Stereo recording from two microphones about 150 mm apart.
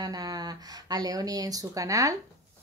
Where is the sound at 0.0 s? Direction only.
25° right (ahead or behind).